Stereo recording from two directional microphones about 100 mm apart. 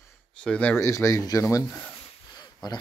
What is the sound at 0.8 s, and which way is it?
Speech, 30° left (ahead or behind).